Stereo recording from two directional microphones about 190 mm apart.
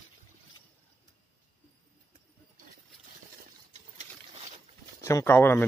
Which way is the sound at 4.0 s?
40° right (ahead or behind).